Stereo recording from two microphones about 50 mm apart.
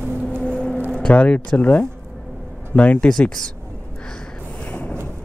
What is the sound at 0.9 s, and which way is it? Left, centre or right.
Speech, left.